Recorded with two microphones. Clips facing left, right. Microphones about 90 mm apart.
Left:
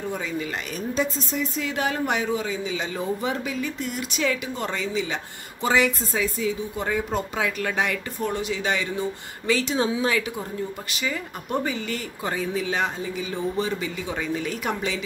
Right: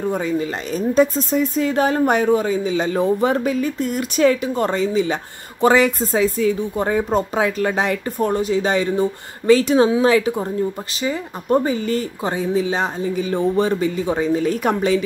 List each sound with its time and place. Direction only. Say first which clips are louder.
0.1 s speech: right 7 dB; 40° right (ahead or behind)
9.5 s speech: right 10 dB; 50° right (ahead or behind)
10.0 s speech: right 9 dB; 35° right (ahead or behind)
12.3 s speech: right 6 dB; 25° right (ahead or behind)
13.0 s speech: right 8 dB; 45° right (ahead or behind)